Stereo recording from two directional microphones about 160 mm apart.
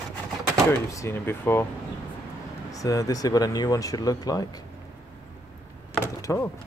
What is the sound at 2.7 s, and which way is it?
Speech, 20° left (ahead or behind).